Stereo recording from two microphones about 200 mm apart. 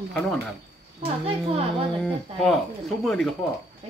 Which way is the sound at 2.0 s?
5° left (ahead or behind).